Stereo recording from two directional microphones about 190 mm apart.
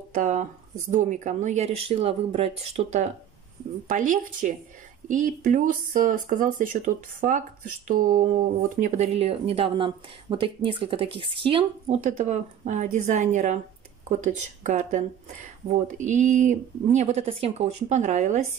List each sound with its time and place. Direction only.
0.1 s speech: 40° right (ahead or behind)
12.1 s speech: 40° right (ahead or behind)